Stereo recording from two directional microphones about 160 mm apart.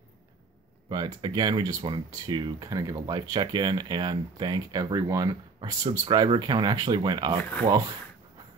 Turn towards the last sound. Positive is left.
turn(degrees=-25)  # may be behind; listen again after turning